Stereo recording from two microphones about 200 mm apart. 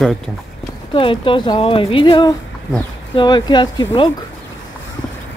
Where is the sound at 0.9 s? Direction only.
25° left (ahead or behind).